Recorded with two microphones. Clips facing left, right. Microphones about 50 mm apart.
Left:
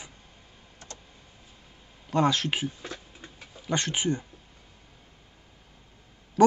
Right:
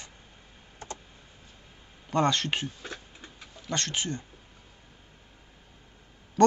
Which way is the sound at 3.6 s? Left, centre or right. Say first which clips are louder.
Left 3 dB; centre.